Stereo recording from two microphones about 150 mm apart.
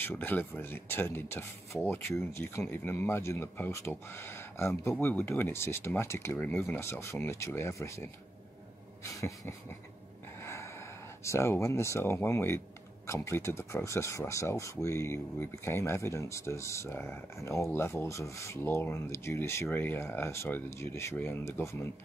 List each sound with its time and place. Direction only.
0.0 s speech: 15° left (ahead or behind)
9.0 s a sound: 20° left (ahead or behind)
10.4 s gasp: 20° left (ahead or behind)
11.2 s speech: 15° left (ahead or behind)